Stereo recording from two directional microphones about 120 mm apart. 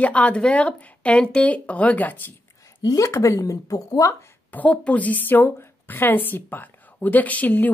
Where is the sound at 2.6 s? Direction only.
25° left (ahead or behind).